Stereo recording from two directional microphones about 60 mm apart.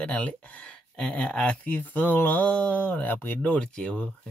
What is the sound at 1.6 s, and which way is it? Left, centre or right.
Speech, left.